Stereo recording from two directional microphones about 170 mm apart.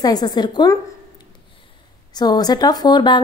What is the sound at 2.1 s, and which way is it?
A woman's voice, 25° left (ahead or behind).